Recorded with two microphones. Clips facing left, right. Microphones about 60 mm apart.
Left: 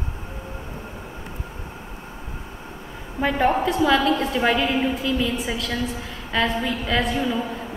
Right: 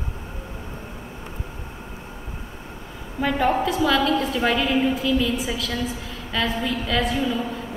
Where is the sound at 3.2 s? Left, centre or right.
Left.